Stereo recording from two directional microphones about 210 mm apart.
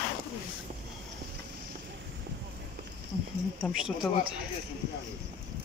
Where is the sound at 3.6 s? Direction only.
Centre (ahead or behind).